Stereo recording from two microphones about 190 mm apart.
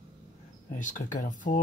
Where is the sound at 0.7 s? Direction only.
40° left (ahead or behind).